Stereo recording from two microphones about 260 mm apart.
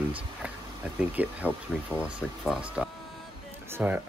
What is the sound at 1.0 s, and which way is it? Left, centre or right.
Speech, centre.